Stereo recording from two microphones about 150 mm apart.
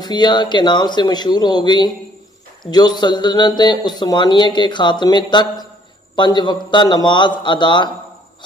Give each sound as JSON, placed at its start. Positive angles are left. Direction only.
{"t": 0.0, "sound": "a man's voice", "side_deg": 30}